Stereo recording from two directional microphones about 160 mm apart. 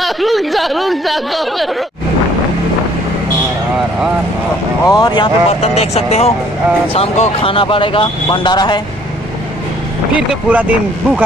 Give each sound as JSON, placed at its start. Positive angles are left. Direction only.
{"t": 0.0, "sound": "speech", "side_deg": 0}
{"t": 4.8, "sound": "speech", "side_deg": 25}
{"t": 5.5, "sound": "speech", "side_deg": 40}
{"t": 10.1, "sound": "speech", "side_deg": -10}